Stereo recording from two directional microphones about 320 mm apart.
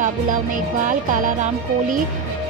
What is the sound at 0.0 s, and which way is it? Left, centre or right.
Speech, right.